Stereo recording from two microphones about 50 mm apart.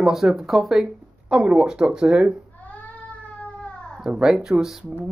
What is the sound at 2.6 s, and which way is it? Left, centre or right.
Cat, left.